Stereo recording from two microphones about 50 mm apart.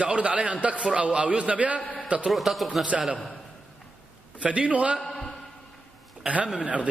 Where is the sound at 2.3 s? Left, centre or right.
Centre.